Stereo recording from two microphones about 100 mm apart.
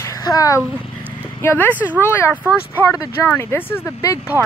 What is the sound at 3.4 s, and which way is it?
Speech, 20° left (ahead or behind).